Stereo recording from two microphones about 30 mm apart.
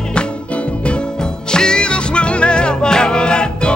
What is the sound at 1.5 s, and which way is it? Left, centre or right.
Music, left.